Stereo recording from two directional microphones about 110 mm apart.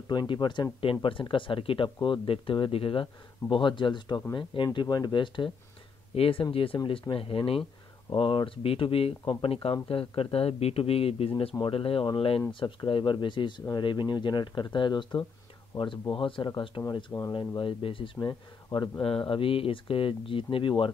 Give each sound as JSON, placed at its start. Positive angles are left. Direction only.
{"t": 0.1, "sound": "speech", "side_deg": 45}
{"t": 6.1, "sound": "speech", "side_deg": 60}
{"t": 9.2, "sound": "speech", "side_deg": 40}
{"t": 9.5, "sound": "speech", "side_deg": 55}
{"t": 19.0, "sound": "speech", "side_deg": 55}